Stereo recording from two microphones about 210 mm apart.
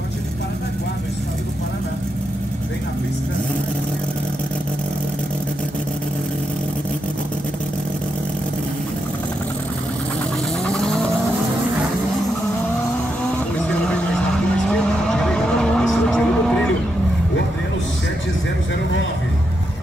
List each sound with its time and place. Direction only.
10.7 s vehicle: centre (ahead or behind)
14.7 s vehicle: 5° left (ahead or behind)